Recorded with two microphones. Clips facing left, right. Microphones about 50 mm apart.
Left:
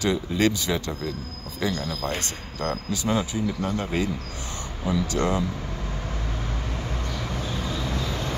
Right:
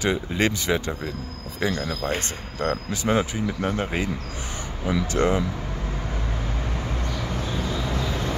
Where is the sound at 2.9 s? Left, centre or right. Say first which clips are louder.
Right 1 dB; right.